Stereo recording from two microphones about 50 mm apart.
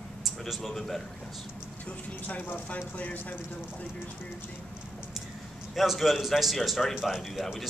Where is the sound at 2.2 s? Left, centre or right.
Left.